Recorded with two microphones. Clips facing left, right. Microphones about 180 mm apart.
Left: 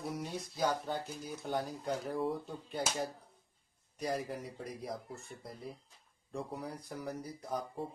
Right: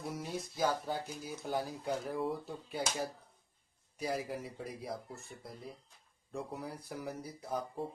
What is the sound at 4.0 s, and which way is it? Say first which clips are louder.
Speech: even; 5° right (ahead or behind).